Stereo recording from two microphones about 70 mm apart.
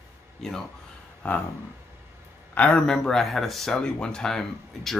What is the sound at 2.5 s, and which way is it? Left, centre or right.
Speech, centre.